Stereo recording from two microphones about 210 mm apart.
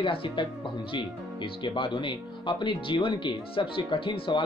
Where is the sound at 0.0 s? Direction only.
25° left (ahead or behind).